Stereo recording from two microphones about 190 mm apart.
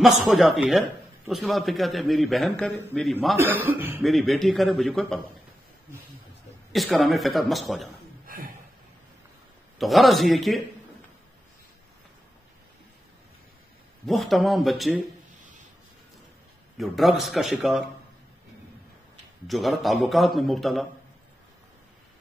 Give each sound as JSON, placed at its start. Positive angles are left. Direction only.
{"t": 0.3, "sound": "a man's voice", "side_deg": 0}
{"t": 3.3, "sound": "a man's voice", "side_deg": -10}
{"t": 4.0, "sound": "a man's voice", "side_deg": 0}
{"t": 6.7, "sound": "a man's voice", "side_deg": 0}
{"t": 9.8, "sound": "a man's voice", "side_deg": 0}
{"t": 14.0, "sound": "a man's voice", "side_deg": 0}
{"t": 16.7, "sound": "a man's voice", "side_deg": 0}
{"t": 19.4, "sound": "a man's voice", "side_deg": 0}